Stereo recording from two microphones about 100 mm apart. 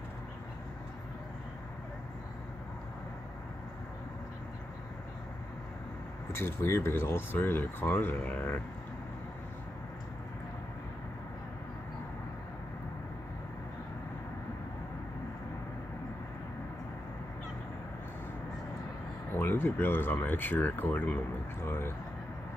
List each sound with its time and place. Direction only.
6.3 s speech: 25° left (ahead or behind)
19.3 s speech: 20° left (ahead or behind)